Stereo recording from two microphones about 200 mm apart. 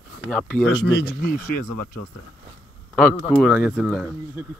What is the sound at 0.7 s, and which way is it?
Speech, 60° left (ahead or behind).